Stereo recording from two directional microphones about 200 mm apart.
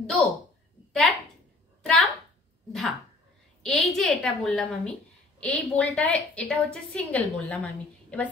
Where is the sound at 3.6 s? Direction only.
Centre (ahead or behind).